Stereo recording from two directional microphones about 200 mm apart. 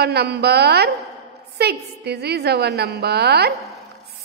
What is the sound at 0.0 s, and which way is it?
A woman's voice, 55° right (ahead or behind).